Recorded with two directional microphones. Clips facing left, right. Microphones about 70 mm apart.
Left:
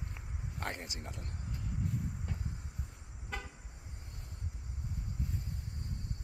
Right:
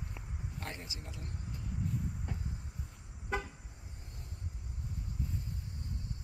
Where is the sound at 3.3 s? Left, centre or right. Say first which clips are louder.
Right 7 dB; centre.